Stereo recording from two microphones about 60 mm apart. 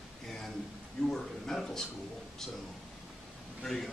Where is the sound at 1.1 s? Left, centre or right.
Centre.